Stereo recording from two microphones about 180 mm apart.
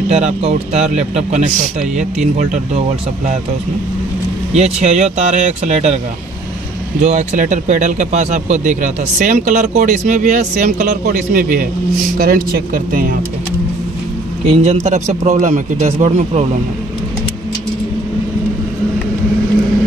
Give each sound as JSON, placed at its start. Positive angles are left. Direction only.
{"t": 0.1, "sound": "a man's voice", "side_deg": -40}
{"t": 4.7, "sound": "a man's voice", "side_deg": -40}
{"t": 7.0, "sound": "speech", "side_deg": -40}
{"t": 14.4, "sound": "a man's voice", "side_deg": -35}